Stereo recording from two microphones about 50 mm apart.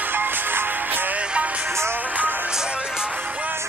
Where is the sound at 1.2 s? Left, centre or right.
Right.